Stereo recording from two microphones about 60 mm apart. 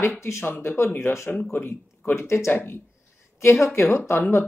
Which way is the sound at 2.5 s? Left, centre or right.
Left.